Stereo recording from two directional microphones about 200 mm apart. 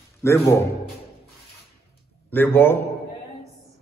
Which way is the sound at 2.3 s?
10° left (ahead or behind).